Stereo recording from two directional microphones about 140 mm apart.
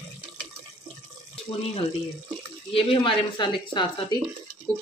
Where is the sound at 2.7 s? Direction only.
40° left (ahead or behind).